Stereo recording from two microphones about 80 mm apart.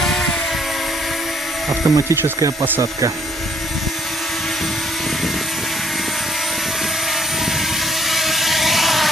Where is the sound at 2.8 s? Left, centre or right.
Right.